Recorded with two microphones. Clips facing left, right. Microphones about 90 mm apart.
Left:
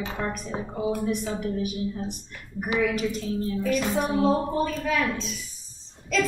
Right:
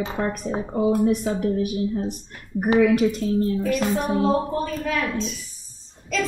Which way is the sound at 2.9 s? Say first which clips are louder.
Right 8 dB; 50° right (ahead or behind).